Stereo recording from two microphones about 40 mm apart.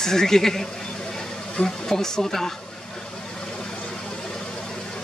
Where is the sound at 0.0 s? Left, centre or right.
Centre.